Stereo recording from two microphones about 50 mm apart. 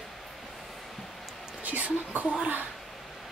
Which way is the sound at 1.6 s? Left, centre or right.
Right.